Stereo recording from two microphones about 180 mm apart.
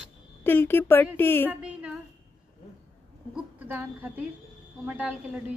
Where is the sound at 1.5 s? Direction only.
5° right (ahead or behind).